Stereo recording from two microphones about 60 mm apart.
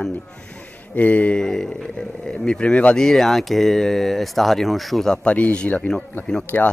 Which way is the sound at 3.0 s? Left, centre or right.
Centre.